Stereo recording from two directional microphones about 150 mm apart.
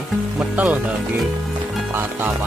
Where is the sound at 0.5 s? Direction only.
10° right (ahead or behind).